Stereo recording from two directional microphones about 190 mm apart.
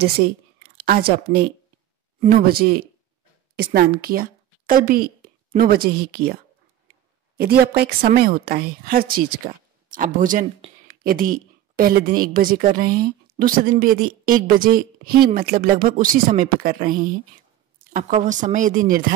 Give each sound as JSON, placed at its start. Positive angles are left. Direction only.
{"t": 0.7, "sound": "a woman's voice", "side_deg": -55}
{"t": 7.3, "sound": "a woman's voice", "side_deg": -55}